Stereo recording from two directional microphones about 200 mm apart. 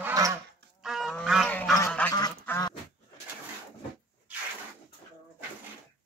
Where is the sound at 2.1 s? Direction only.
15° left (ahead or behind).